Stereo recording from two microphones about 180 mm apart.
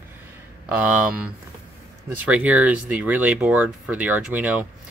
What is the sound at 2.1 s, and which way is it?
Speech, 10° right (ahead or behind).